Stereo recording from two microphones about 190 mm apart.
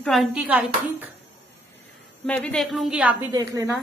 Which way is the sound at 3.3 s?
20° right (ahead or behind).